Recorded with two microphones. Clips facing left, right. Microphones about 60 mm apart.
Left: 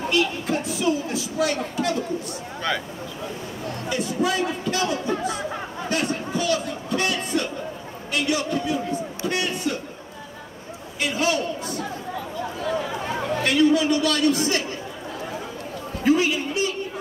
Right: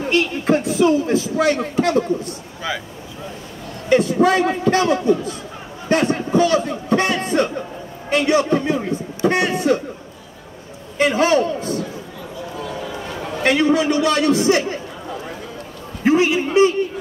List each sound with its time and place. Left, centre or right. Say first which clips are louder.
0.1 s speech: right 6 dB; right
3.9 s a man's voice: right 10 dB; right
11.0 s speech: right 8 dB; right
13.4 s a man's voice: right 3 dB; right
16.0 s a man's voice: right 4 dB; right